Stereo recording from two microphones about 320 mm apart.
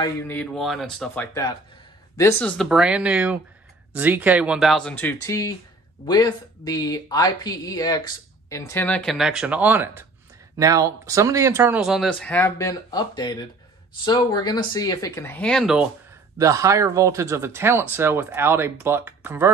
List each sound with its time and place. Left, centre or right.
0.0 s speech: centre